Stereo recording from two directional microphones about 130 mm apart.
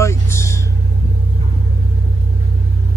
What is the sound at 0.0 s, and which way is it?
Vehicle, 20° left (ahead or behind).